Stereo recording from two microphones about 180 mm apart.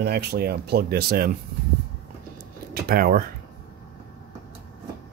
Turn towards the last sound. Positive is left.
turn(degrees=-55)  # may be behind; listen again after turning